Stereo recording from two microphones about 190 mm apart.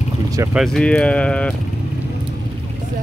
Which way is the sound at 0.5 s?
Centre (ahead or behind).